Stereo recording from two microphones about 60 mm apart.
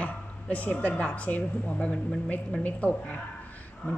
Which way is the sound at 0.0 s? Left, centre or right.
Left.